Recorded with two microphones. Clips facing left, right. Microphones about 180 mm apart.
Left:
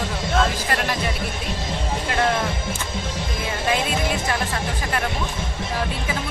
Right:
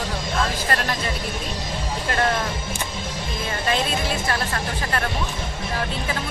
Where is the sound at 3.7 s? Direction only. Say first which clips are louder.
Left 1 dB; 15° left (ahead or behind).